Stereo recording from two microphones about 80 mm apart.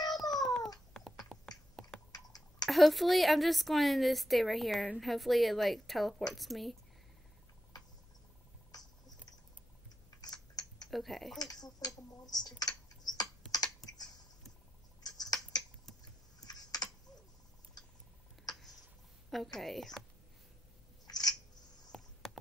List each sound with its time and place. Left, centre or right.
0.1 s a sound: centre
2.6 s a woman's voice: centre
10.2 s typing: left
10.9 s a woman's voice: centre
11.3 s speech: left
15.0 s a sound: left
16.4 s typing: left
19.3 s a woman's voice: centre
21.1 s scissors: left
21.9 s a sound: centre